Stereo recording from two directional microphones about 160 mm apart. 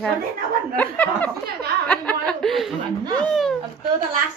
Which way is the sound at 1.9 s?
5° left (ahead or behind).